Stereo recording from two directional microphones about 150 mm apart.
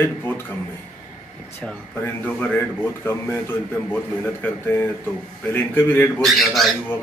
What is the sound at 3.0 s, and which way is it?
Speech, 15° left (ahead or behind).